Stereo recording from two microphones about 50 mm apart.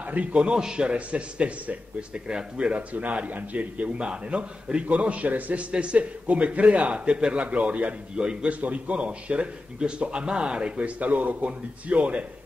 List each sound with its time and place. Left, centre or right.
0.0 s a man's voice: right
8.5 s a man's voice: right